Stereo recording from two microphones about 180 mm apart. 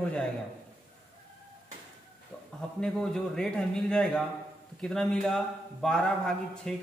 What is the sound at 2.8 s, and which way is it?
A man's voice, 5° left (ahead or behind).